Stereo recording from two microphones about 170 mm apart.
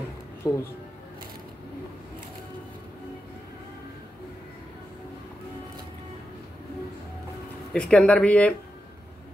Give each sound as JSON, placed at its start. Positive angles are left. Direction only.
{"t": 0.4, "sound": "speech", "side_deg": 20}
{"t": 7.7, "sound": "speech", "side_deg": 5}